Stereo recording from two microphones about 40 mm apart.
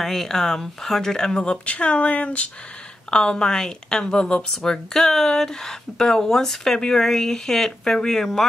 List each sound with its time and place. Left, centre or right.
0.0 s speech: centre
1.5 s speech: left
3.1 s speech: left; by 8.5 s centre